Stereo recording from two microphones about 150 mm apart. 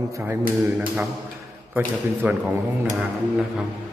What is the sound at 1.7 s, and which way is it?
Speech, 10° right (ahead or behind).